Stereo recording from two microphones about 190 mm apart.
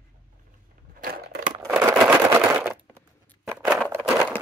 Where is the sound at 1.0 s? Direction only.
45° right (ahead or behind).